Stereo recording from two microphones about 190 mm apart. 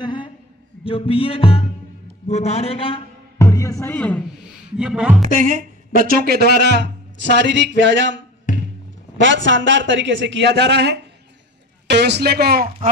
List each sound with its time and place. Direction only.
0.0 s a sound: 25° left (ahead or behind)
0.8 s music: 30° left (ahead or behind)
2.2 s a man's voice: 35° left (ahead or behind)
3.3 s music: 15° left (ahead or behind)
4.7 s speech: 5° right (ahead or behind)
5.3 s speech: 45° right (ahead or behind); by 8.2 s 70° right (ahead or behind)
8.5 s music: 45° left (ahead or behind)
9.2 s speech: 75° right (ahead or behind); by 12.9 s 55° right (ahead or behind)